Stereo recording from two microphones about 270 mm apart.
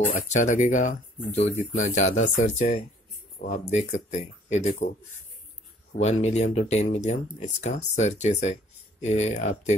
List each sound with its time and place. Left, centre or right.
0.1 s speech: left
6.0 s speech: left